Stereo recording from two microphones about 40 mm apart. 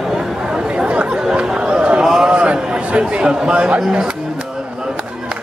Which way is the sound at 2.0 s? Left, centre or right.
Centre.